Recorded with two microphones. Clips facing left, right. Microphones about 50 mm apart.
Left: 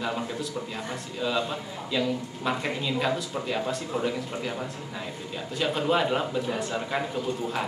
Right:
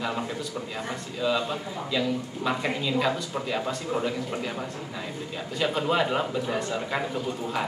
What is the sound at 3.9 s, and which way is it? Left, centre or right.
Speech, right.